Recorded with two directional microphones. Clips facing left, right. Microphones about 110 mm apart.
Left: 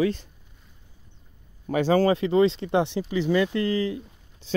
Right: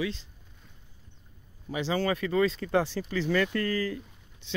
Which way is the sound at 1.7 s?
50° left (ahead or behind).